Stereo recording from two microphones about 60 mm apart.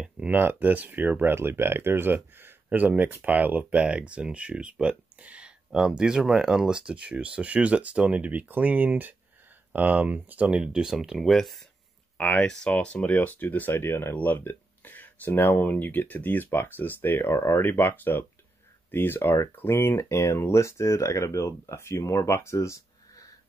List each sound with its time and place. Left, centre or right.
0.3 s speech: right
1.3 s speech: right
5.7 s speech: centre; by 10.5 s right
10.5 s speech: centre
12.2 s speech: left